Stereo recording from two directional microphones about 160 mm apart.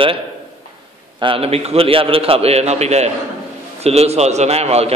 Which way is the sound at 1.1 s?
35° right (ahead or behind).